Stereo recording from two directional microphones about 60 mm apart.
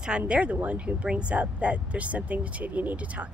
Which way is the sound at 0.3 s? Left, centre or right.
Right.